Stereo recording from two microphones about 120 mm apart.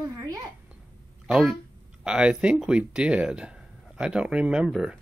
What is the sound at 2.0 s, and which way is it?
Speech, 5° right (ahead or behind).